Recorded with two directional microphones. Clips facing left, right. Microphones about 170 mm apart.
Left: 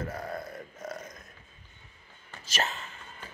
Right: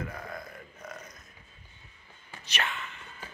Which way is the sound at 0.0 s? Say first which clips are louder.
Left 3 dB; 40° left (ahead or behind).